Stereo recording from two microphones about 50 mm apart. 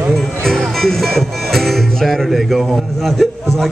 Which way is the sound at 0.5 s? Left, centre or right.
Centre.